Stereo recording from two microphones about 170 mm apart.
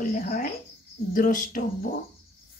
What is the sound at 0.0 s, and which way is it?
Speech, 50° left (ahead or behind).